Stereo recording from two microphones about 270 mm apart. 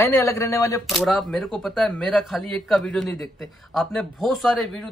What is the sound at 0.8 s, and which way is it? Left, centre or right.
Speech, centre.